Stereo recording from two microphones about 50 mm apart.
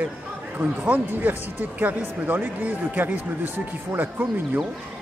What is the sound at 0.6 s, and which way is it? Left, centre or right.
Speech, right.